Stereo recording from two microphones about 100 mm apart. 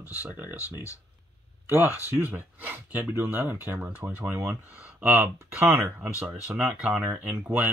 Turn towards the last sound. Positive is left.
turn(degrees=-20)  # may be behind; listen again after turning